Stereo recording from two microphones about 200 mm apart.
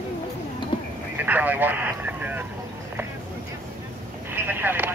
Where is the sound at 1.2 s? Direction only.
10° right (ahead or behind).